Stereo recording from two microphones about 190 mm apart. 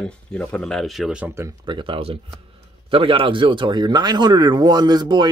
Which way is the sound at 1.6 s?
25° right (ahead or behind).